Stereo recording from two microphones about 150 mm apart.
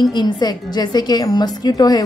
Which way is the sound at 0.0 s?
30° left (ahead or behind).